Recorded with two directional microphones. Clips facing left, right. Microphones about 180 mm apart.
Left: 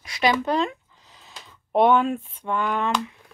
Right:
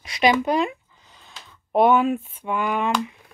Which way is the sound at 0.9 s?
Centre (ahead or behind).